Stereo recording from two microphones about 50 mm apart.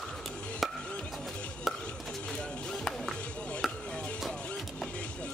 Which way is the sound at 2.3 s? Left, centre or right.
Centre.